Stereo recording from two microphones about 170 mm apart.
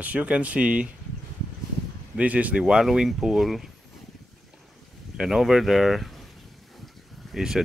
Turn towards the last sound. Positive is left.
turn(degrees=-5)  # may be behind; listen again after turning